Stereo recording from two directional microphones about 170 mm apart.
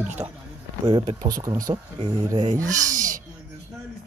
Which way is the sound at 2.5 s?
50° right (ahead or behind).